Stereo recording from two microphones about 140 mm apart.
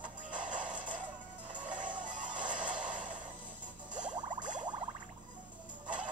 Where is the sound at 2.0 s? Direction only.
65° right (ahead or behind).